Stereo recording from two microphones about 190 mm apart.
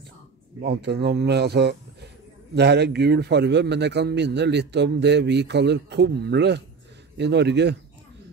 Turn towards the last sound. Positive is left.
turn(degrees=-65)  # may be behind; listen again after turning